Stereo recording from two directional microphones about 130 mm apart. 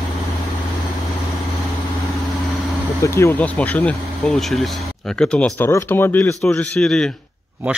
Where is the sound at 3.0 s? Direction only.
20° left (ahead or behind); by 5.5 s 5° left (ahead or behind).